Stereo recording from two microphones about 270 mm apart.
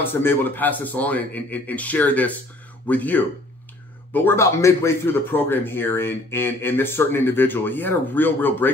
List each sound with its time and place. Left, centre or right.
0.0 s speech: centre